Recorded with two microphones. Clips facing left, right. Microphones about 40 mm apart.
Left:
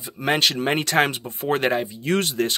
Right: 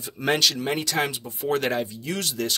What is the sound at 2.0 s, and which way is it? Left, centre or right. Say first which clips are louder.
Speech: left 6 dB; left.